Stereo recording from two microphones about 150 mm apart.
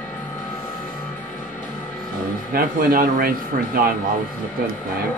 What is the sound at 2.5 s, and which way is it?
Speech, 75° right (ahead or behind).